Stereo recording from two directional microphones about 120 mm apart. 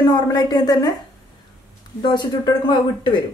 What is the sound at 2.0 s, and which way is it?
Speech, 40° left (ahead or behind).